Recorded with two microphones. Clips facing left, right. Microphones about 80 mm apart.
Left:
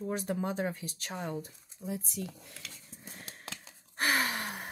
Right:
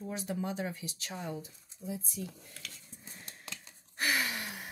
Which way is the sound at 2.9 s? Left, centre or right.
Left.